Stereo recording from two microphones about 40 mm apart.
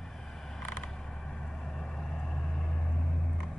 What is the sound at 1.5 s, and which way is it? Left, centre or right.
Vehicle, centre.